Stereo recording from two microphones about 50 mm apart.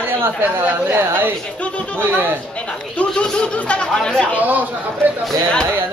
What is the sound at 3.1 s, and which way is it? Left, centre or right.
Speech, centre.